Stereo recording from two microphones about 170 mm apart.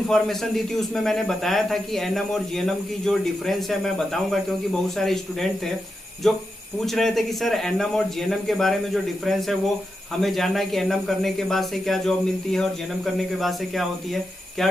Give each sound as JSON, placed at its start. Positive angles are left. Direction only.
{"t": 0.1, "sound": "speech", "side_deg": 0}